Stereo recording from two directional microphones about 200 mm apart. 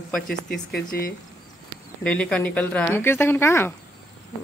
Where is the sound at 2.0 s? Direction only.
5° left (ahead or behind).